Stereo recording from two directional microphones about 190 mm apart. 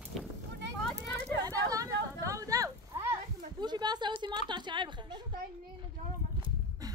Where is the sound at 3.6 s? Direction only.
20° right (ahead or behind).